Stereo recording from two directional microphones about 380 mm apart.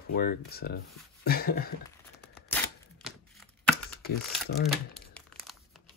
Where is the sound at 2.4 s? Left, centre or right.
Centre.